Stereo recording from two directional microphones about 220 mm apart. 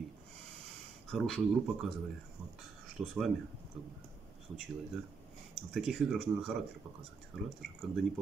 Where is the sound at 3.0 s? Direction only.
5° right (ahead or behind).